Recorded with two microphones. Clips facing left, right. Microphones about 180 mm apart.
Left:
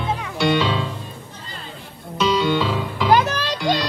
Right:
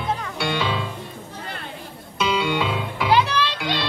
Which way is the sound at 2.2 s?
10° right (ahead or behind).